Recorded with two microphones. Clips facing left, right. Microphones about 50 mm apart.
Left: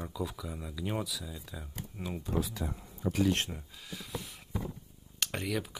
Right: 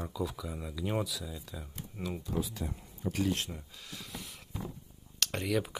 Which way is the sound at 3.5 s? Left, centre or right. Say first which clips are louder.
Left 1 dB; centre.